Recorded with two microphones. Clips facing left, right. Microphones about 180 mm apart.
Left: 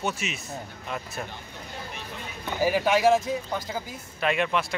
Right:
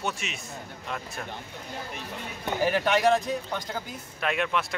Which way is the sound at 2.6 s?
10° left (ahead or behind).